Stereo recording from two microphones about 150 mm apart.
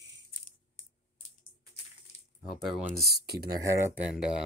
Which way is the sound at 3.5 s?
20° right (ahead or behind).